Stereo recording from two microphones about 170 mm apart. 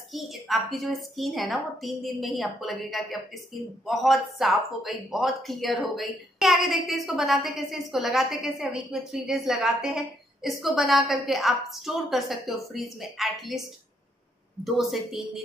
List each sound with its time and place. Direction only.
0.1 s speech: centre (ahead or behind)
14.6 s speech: centre (ahead or behind)